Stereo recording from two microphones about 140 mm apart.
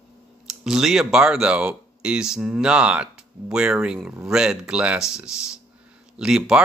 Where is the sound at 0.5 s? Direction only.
5° right (ahead or behind).